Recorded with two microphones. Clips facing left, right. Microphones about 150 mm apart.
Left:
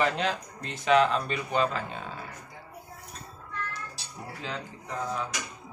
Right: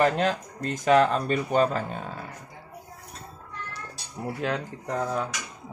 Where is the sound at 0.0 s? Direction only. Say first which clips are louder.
Right 4 dB; 45° right (ahead or behind).